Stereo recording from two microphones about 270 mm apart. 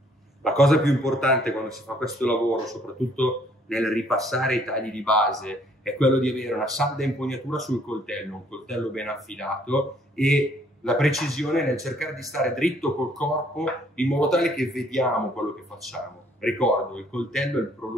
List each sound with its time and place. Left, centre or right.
0.4 s speech: centre